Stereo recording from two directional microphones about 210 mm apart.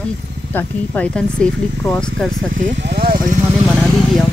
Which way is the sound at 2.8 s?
50° right (ahead or behind).